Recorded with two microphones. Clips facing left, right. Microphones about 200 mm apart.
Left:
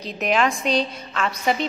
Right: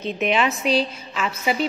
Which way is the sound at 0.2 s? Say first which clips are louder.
Left 1 dB; centre (ahead or behind).